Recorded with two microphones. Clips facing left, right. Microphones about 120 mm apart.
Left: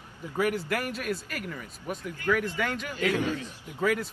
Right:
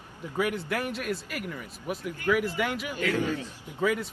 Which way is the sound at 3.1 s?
15° left (ahead or behind).